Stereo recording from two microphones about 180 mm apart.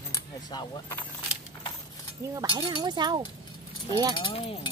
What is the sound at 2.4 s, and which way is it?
Speech, 20° right (ahead or behind).